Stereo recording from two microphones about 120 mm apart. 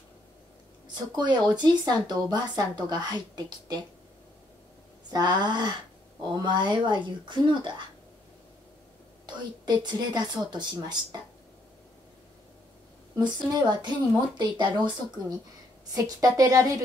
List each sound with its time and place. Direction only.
0.8 s speech: 40° right (ahead or behind)
5.1 s speech: 40° right (ahead or behind)
9.2 s speech: 35° right (ahead or behind)
13.2 s a woman's voice: 40° right (ahead or behind)